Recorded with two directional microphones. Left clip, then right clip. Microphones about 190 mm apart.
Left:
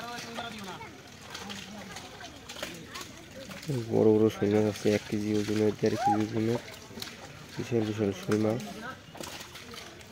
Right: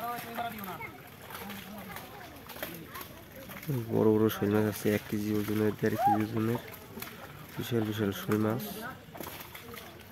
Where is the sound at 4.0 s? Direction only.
20° right (ahead or behind).